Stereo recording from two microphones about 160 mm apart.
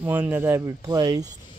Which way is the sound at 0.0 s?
10° right (ahead or behind).